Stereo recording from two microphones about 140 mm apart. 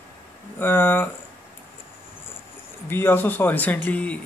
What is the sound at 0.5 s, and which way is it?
Speech, 15° left (ahead or behind).